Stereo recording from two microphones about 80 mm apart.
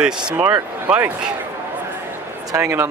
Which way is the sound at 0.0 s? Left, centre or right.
Centre.